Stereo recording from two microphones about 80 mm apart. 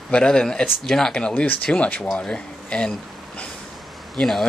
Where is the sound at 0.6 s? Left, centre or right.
Centre.